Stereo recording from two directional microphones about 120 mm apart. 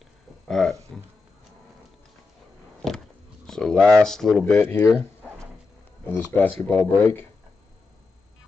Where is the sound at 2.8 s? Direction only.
Centre (ahead or behind).